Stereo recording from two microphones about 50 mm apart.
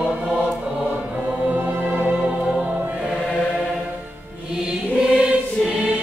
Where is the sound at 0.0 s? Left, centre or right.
Centre.